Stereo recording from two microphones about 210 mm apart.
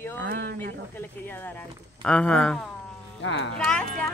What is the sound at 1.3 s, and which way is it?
Speech, 10° left (ahead or behind).